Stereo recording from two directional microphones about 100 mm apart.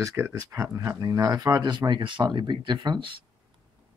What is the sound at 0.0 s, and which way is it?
Speech, 30° right (ahead or behind).